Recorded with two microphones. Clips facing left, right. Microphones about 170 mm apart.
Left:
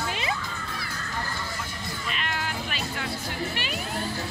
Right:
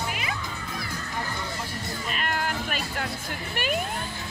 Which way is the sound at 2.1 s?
45° right (ahead or behind).